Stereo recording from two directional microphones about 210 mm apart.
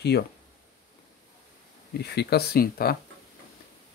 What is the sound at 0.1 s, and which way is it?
Speech, 45° left (ahead or behind).